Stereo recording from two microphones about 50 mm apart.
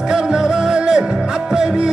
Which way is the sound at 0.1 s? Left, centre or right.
Centre.